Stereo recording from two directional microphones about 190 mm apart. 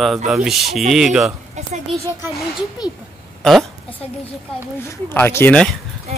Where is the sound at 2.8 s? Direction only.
20° left (ahead or behind).